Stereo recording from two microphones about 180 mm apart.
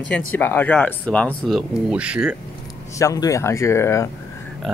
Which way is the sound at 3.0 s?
20° left (ahead or behind).